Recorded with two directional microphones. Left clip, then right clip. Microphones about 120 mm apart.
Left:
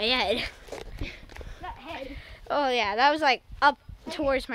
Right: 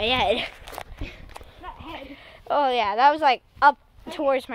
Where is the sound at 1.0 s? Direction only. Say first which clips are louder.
Even; 25° right (ahead or behind).